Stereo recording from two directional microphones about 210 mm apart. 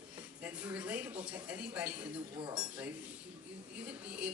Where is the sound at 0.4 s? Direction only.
5° right (ahead or behind).